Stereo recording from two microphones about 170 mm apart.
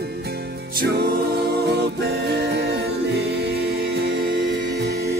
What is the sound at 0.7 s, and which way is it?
Music, 70° right (ahead or behind).